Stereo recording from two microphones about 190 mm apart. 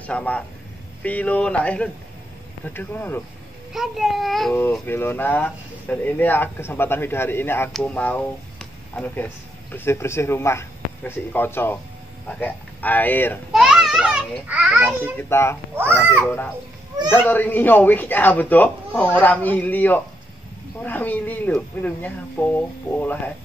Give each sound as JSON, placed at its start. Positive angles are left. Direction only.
{"t": 0.0, "sound": "a man's voice", "side_deg": 5}
{"t": 3.7, "sound": "speech", "side_deg": 0}
{"t": 13.5, "sound": "a child's voice", "side_deg": -5}
{"t": 15.1, "sound": "speech", "side_deg": 15}
{"t": 15.7, "sound": "a child's voice", "side_deg": -10}
{"t": 17.1, "sound": "speech", "side_deg": 10}